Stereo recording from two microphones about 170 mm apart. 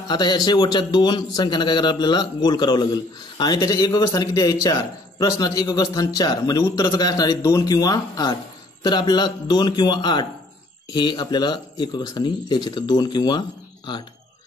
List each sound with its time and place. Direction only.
0.1 s a man's voice: 25° left (ahead or behind)